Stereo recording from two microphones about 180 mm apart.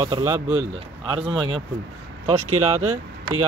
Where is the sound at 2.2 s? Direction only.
40° right (ahead or behind).